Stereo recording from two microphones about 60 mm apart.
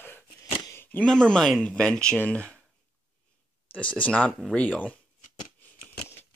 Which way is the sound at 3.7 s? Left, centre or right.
Left.